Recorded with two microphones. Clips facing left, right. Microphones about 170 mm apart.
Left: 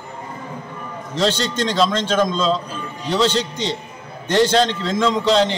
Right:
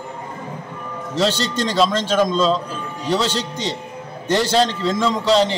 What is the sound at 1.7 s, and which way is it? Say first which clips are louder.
Speech: right 1 dB; 5° right (ahead or behind).